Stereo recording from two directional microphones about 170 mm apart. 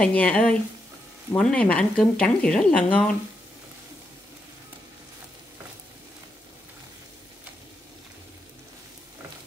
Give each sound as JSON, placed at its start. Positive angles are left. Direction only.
{"t": 0.0, "sound": "speech", "side_deg": 10}